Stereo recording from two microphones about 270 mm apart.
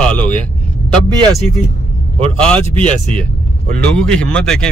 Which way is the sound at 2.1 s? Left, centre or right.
Right.